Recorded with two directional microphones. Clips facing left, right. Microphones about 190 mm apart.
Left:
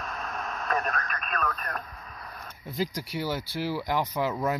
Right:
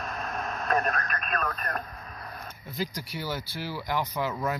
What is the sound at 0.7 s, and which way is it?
Speech, 5° right (ahead or behind).